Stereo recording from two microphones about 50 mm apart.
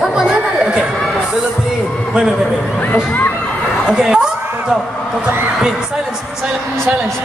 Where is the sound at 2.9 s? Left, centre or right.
Left.